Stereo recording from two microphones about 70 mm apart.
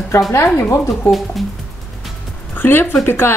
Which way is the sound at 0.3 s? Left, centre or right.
Left.